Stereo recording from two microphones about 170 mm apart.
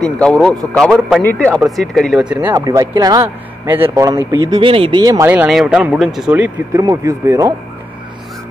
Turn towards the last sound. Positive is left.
turn(degrees=-20)  # may be behind; listen again after turning